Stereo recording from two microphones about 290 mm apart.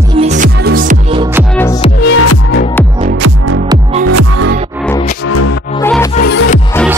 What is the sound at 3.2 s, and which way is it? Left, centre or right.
Music, right.